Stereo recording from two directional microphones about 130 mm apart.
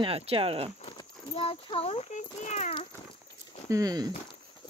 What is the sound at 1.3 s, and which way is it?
A child's voice, 45° left (ahead or behind).